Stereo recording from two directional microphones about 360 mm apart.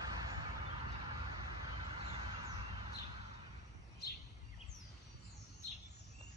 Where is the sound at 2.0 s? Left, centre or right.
Centre.